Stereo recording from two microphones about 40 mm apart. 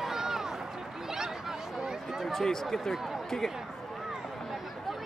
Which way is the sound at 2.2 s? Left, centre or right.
Centre.